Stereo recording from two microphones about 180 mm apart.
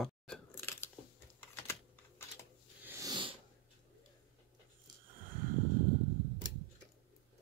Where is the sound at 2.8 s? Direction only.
20° right (ahead or behind).